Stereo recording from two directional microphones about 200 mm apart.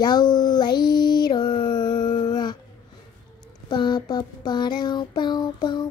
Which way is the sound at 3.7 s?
20° left (ahead or behind).